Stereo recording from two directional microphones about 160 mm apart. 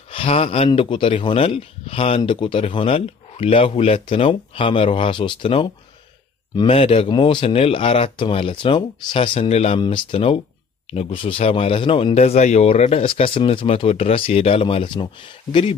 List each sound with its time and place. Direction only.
0.1 s speech: 35° left (ahead or behind)